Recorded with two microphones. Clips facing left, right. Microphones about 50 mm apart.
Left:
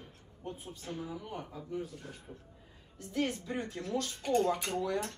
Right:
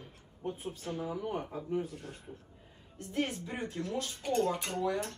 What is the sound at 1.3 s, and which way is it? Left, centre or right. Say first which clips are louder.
Speech: right 5 dB; right.